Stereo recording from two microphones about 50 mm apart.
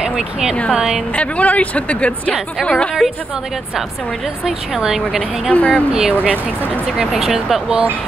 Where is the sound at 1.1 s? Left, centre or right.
Left.